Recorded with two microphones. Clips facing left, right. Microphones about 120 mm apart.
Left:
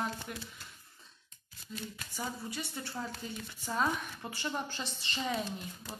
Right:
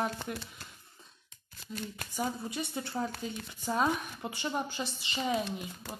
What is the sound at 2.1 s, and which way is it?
A woman's voice, 20° right (ahead or behind).